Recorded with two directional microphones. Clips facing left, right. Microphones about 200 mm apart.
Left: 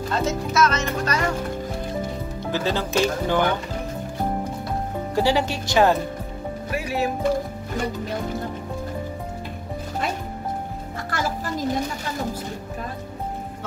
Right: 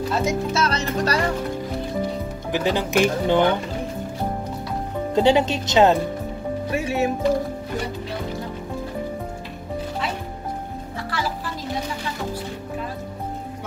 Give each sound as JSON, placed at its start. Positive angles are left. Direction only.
{"t": 0.1, "sound": "speech", "side_deg": -15}
{"t": 0.5, "sound": "speech", "side_deg": -30}
{"t": 2.5, "sound": "speech", "side_deg": -15}
{"t": 5.1, "sound": "speech", "side_deg": -20}
{"t": 11.1, "sound": "music", "side_deg": 45}